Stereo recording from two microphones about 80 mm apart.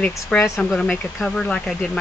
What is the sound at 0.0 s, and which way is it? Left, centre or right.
Speech, centre.